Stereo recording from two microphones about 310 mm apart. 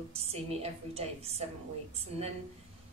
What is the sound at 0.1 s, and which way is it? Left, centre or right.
A woman's voice, centre.